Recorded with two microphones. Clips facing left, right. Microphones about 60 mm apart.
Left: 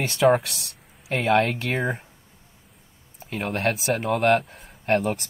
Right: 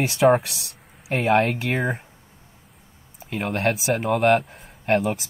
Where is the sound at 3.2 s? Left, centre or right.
Centre.